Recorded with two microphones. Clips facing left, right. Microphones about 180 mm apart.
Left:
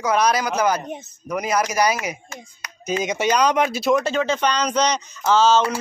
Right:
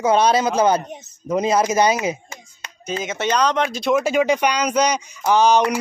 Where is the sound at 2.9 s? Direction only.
15° left (ahead or behind); by 5.7 s 15° right (ahead or behind).